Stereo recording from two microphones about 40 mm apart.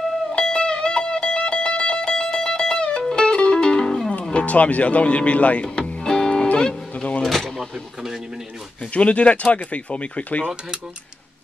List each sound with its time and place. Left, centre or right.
0.3 s music: left
4.1 s music: left
7.2 s a sound: centre
8.9 s speech: left